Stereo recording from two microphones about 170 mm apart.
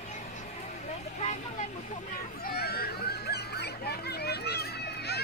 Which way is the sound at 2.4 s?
65° left (ahead or behind).